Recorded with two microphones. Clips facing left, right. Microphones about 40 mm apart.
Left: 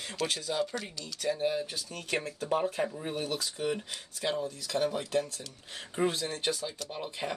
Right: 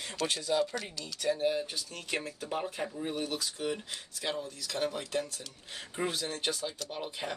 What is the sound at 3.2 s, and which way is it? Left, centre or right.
Speech, left.